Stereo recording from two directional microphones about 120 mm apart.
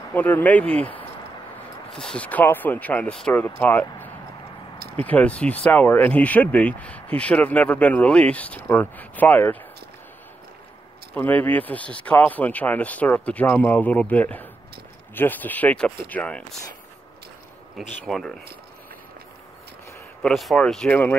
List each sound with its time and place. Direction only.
0.1 s speech: 15° left (ahead or behind)
11.1 s speech: 15° left (ahead or behind)
17.7 s speech: centre (ahead or behind)
20.2 s speech: 5° left (ahead or behind)